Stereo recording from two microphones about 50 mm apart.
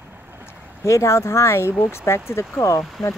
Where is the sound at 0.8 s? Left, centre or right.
Left.